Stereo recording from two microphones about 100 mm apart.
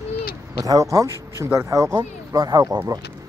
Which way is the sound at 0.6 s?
35° right (ahead or behind).